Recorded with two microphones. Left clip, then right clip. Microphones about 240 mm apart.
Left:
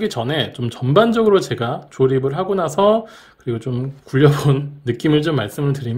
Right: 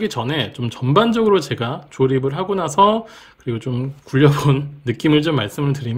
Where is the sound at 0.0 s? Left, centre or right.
Centre.